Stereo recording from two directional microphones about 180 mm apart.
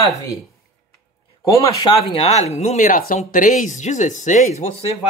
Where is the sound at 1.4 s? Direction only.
20° left (ahead or behind); by 4.9 s 40° left (ahead or behind).